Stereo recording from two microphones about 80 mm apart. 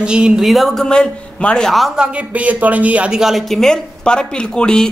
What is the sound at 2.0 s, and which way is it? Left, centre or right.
Speech, centre.